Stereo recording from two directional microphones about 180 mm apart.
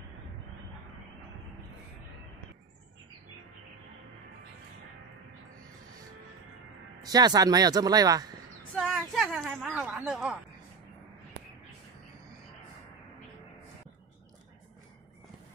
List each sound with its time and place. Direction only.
7.0 s speech: 20° right (ahead or behind)
8.7 s speech: centre (ahead or behind)